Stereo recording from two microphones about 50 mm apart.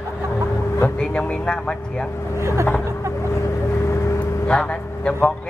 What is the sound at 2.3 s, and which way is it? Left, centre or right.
Speech, right.